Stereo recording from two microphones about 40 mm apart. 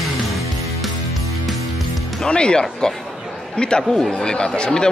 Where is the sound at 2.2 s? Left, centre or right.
Left.